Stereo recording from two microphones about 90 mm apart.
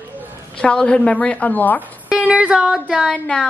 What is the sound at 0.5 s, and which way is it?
A man's voice, 10° left (ahead or behind).